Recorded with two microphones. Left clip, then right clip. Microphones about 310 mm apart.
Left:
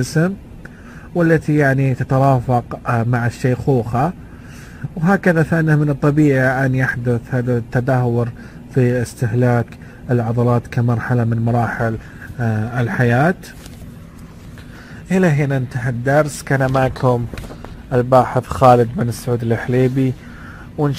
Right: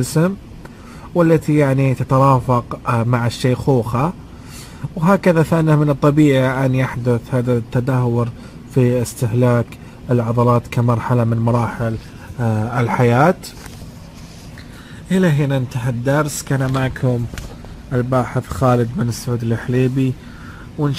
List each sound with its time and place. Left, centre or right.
0.2 s speech: centre
15.0 s speech: centre
16.6 s a man's voice: left
19.2 s speech: left